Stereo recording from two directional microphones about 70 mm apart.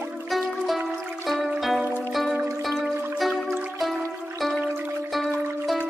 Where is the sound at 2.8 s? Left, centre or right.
Centre.